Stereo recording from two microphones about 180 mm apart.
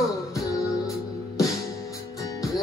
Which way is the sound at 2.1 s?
20° left (ahead or behind).